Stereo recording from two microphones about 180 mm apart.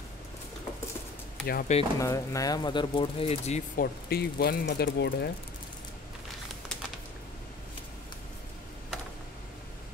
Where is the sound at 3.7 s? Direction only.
60° left (ahead or behind).